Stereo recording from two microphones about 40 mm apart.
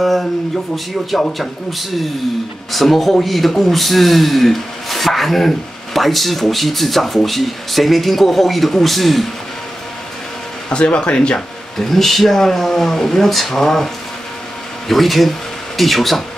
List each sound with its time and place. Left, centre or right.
0.0 s speech: centre
1.4 s a man's voice: centre
10.7 s speech: left
11.9 s speech: centre
14.9 s a man's voice: centre